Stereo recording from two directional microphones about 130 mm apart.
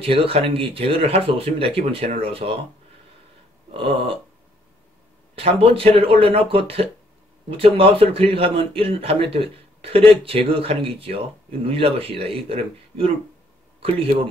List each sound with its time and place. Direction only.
0.0 s a man's voice: 45° right (ahead or behind)
5.3 s a man's voice: 45° right (ahead or behind)